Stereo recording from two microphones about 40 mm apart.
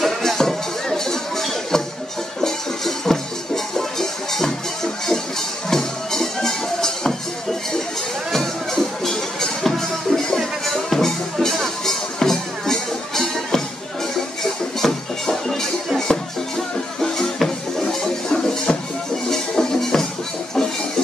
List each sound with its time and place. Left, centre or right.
0.0 s music: centre
5.7 s music: centre
8.3 s music: centre
14.8 s music: centre